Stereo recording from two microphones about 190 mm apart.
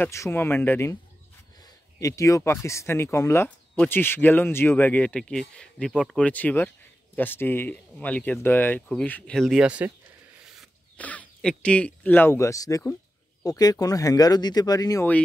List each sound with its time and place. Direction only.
0.0 s speech: 15° left (ahead or behind)